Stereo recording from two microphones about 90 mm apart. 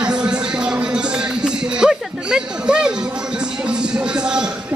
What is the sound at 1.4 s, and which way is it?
Music, 10° right (ahead or behind).